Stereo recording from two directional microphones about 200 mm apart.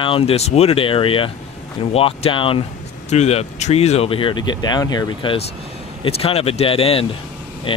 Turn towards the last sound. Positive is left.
turn(degrees=25)  # may be behind; listen again after turning